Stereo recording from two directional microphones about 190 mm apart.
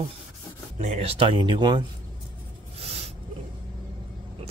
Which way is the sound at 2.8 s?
35° right (ahead or behind).